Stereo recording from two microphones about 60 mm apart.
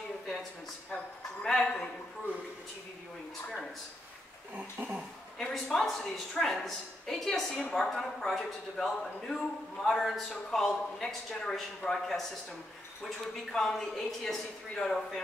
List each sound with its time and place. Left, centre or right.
1.4 s a man's voice: centre
4.6 s speech: right
5.4 s a woman's voice: centre